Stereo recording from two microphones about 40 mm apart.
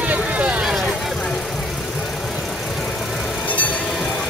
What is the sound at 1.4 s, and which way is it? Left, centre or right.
Vehicle, centre.